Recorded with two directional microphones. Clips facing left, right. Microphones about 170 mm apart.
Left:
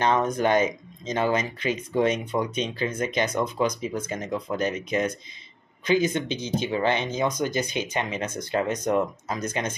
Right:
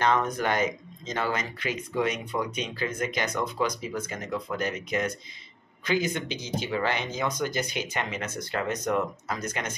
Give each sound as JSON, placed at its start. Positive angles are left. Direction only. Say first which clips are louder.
{"t": 0.0, "sound": "speech", "louder": "left 3 dB", "side_deg": 20}